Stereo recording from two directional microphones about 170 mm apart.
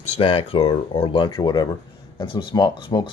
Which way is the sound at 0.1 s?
35° left (ahead or behind).